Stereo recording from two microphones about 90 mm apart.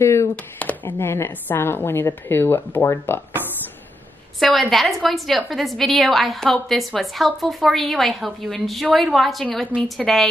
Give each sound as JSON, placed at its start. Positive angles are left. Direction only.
{"t": 0.0, "sound": "speech", "side_deg": 30}
{"t": 0.6, "sound": "a woman's voice", "side_deg": 20}
{"t": 4.4, "sound": "a woman's voice", "side_deg": 0}